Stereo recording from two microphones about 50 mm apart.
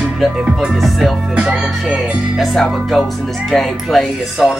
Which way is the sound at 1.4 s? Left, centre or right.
Centre.